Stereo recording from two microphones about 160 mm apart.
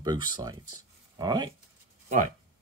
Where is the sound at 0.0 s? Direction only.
25° right (ahead or behind).